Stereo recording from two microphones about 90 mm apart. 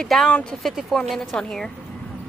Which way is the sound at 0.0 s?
5° left (ahead or behind).